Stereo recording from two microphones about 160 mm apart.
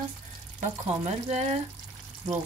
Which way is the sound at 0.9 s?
40° right (ahead or behind).